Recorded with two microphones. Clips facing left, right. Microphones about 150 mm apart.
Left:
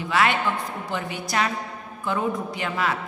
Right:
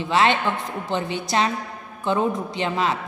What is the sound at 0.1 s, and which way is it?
A woman's voice, 25° right (ahead or behind).